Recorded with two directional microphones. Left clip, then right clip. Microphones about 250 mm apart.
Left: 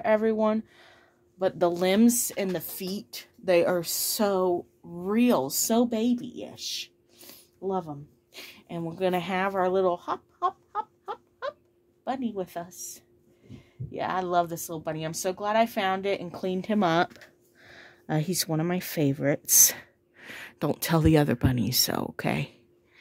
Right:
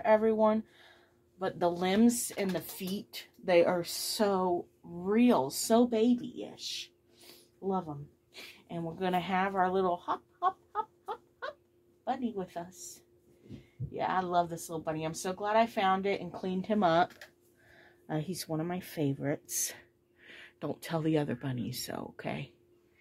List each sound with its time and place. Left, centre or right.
0.0 s speech: left
13.9 s speech: left